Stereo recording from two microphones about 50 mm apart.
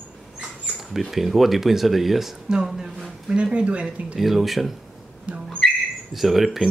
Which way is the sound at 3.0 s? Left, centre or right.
Right.